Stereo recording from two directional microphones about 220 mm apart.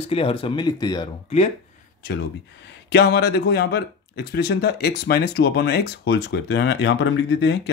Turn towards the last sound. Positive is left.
turn(degrees=55)  # may be behind; listen again after turning